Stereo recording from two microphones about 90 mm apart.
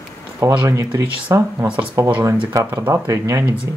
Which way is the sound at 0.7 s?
35° right (ahead or behind).